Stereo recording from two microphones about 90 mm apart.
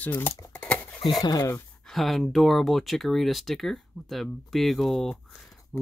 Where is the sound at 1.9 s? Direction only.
Centre (ahead or behind).